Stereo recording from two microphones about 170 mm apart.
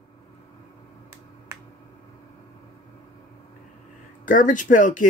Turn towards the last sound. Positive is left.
turn(degrees=50)  # may be behind; listen again after turning